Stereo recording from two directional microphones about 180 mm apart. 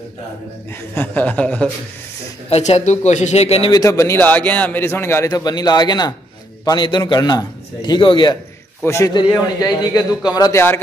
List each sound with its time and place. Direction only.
0.9 s a man's voice: 10° left (ahead or behind)
2.5 s speech: 40° left (ahead or behind)
3.7 s a man's voice: 15° left (ahead or behind)